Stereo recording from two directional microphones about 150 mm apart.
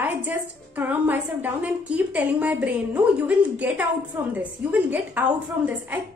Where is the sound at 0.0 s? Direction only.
10° right (ahead or behind).